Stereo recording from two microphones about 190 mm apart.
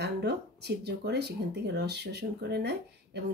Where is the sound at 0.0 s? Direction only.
60° right (ahead or behind).